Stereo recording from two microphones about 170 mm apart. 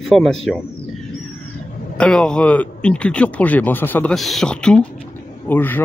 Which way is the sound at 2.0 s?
5° left (ahead or behind).